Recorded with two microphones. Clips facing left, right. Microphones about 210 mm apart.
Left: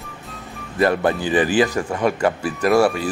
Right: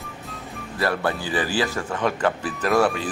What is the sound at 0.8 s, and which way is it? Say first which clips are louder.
Speech: left 6 dB; 20° left (ahead or behind).